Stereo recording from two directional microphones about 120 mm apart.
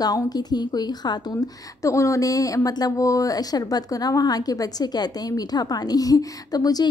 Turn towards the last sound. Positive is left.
turn(degrees=30)  # may be behind; listen again after turning